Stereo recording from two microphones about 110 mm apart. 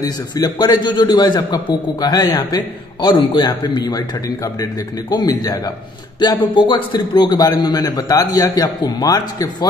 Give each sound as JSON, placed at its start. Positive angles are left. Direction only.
{"t": 0.0, "sound": "speech", "side_deg": 35}
{"t": 5.1, "sound": "speech", "side_deg": 35}